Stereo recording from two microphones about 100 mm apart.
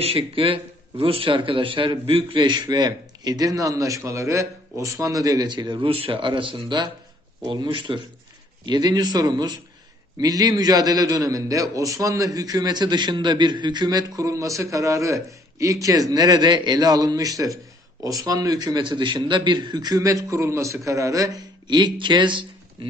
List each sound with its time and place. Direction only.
0.0 s a man's voice: 65° right (ahead or behind); by 5.9 s 50° right (ahead or behind)
5.9 s a man's voice: 60° right (ahead or behind)